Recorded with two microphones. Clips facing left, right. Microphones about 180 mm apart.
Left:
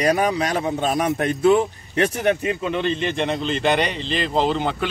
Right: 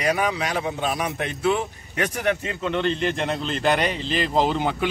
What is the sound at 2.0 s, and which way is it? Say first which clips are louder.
A man's voice: left 4 dB; 25° left (ahead or behind).